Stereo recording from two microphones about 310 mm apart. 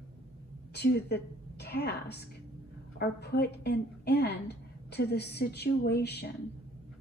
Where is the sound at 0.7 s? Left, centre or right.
Left.